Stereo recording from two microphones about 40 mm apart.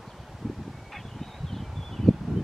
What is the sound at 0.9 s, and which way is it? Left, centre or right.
Fowl, centre.